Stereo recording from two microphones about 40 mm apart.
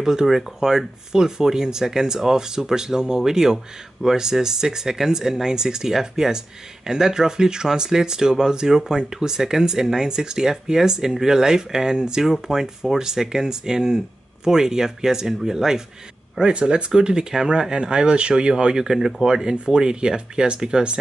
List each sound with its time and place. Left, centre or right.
0.0 s speech: centre
16.4 s speech: right